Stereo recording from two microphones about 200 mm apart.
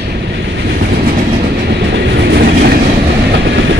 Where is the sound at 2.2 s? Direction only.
55° right (ahead or behind).